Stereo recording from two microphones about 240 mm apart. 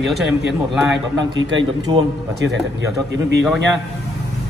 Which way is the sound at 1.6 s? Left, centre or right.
Centre.